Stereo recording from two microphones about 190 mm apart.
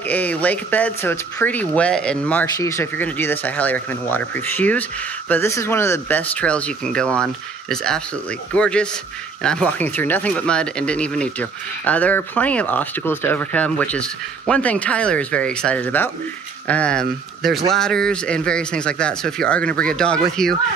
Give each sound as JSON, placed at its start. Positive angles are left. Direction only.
{"t": 0.1, "sound": "speech", "side_deg": 10}